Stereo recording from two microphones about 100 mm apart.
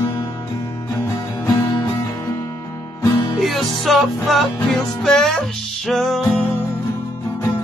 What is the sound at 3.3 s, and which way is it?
Music, centre (ahead or behind).